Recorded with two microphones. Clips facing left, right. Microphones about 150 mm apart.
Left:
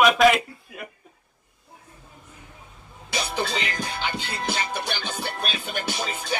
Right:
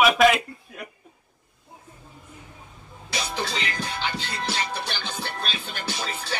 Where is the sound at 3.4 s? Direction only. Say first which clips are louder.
Left 2 dB; 15° left (ahead or behind).